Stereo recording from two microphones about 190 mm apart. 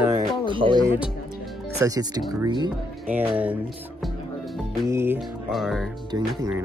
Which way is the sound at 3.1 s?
10° right (ahead or behind).